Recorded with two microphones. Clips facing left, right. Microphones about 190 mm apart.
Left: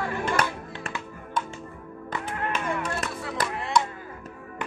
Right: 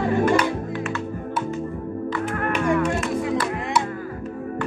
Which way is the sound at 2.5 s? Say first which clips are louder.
Right 11 dB; 15° right (ahead or behind).